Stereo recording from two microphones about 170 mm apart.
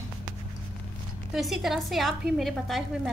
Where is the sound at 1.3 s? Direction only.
Centre (ahead or behind).